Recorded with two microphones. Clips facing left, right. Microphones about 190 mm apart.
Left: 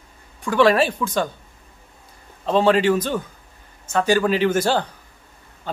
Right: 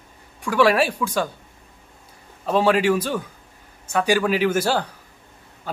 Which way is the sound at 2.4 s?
5° right (ahead or behind).